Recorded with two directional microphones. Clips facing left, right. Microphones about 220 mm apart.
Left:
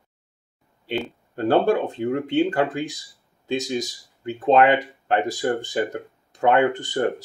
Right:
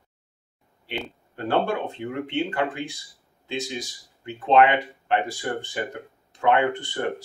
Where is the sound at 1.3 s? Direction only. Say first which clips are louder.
Left 6 dB; 40° left (ahead or behind).